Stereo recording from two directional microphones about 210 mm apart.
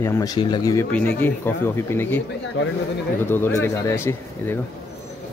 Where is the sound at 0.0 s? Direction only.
15° left (ahead or behind).